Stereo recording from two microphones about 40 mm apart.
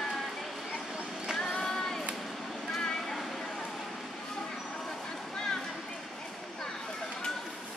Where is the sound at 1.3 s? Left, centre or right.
Left.